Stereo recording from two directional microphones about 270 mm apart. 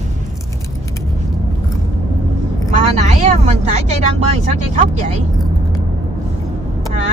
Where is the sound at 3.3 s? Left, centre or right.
Right.